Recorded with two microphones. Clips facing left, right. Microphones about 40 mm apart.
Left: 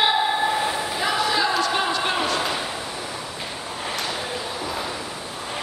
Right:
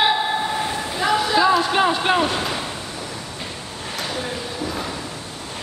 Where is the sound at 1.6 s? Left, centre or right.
Right.